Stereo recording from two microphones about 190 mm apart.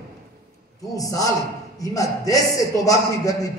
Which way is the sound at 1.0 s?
20° left (ahead or behind).